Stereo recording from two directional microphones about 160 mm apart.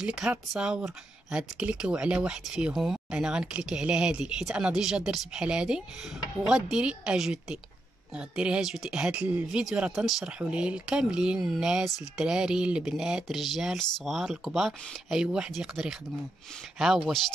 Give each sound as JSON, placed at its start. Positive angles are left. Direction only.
{"t": 0.0, "sound": "speech", "side_deg": -5}